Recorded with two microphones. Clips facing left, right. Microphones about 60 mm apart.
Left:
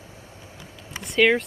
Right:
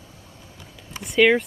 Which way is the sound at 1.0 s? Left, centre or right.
Centre.